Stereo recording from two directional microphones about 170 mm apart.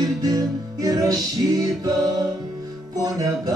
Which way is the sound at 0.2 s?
20° right (ahead or behind).